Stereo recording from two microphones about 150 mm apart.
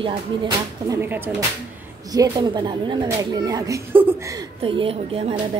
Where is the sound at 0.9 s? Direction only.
15° right (ahead or behind).